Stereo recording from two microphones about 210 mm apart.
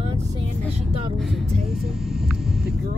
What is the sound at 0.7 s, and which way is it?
Speech, 25° right (ahead or behind).